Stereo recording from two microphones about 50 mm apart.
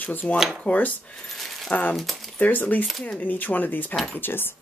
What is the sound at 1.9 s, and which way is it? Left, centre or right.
Speech, centre.